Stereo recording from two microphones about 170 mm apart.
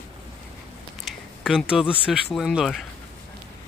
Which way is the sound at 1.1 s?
Centre (ahead or behind).